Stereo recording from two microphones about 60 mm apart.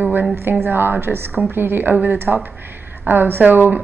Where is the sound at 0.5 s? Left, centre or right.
Right.